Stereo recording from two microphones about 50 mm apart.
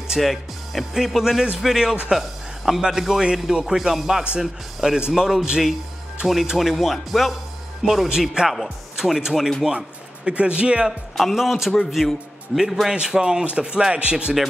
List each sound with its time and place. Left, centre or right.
0.2 s a man's voice: centre; by 10.9 s right
10.9 s speech: centre
12.9 s speech: centre